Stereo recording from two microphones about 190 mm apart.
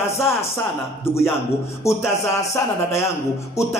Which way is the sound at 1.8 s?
15° left (ahead or behind).